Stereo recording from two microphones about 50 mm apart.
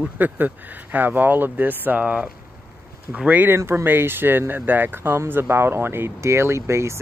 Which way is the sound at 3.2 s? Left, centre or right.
Right.